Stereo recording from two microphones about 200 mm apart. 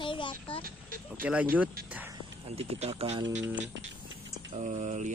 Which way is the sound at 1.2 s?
10° right (ahead or behind).